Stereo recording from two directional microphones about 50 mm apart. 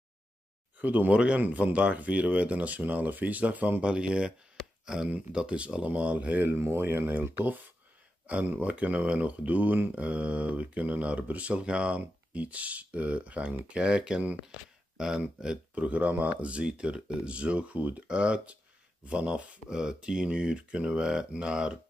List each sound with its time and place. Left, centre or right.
0.7 s speech: right
3.8 s speech: right
6.5 s speech: right
8.6 s speech: right
15.7 s speech: right